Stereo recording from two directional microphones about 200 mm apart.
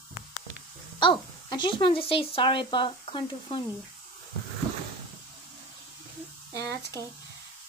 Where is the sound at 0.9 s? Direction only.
25° left (ahead or behind).